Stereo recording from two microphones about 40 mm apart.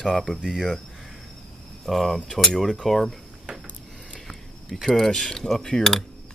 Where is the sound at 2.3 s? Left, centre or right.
Centre.